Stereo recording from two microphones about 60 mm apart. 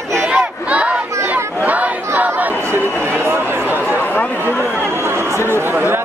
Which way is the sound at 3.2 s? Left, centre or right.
Right.